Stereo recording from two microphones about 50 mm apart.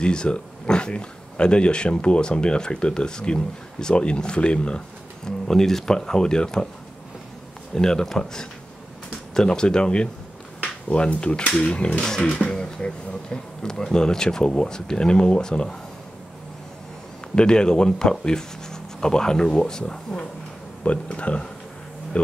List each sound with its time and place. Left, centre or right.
0.0 s speech: centre
7.7 s speech: centre
17.4 s speech: centre